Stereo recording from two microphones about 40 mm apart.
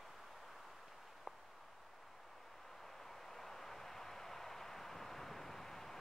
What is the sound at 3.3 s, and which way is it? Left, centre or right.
Vehicle, centre.